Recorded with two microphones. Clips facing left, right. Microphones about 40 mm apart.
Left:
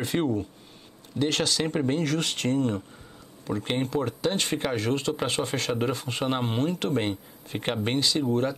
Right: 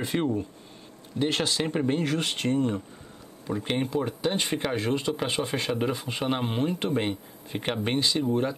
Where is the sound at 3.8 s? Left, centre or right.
Centre.